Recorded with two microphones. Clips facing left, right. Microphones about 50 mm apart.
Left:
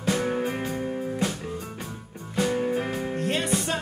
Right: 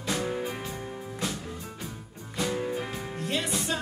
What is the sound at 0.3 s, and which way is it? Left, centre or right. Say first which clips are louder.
Music: left 5 dB; left.